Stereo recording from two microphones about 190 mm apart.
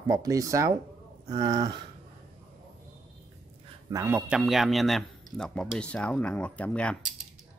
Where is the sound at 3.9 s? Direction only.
15° right (ahead or behind); by 7.0 s 5° left (ahead or behind).